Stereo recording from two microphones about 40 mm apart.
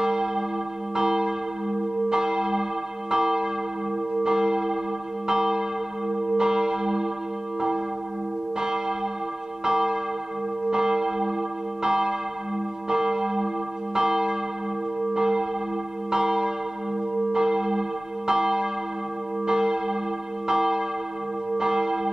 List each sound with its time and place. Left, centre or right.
0.0 s church bell: centre
8.5 s church bell: centre